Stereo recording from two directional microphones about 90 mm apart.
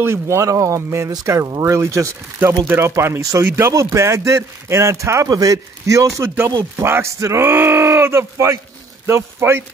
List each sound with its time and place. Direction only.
0.0 s a man's voice: 30° right (ahead or behind)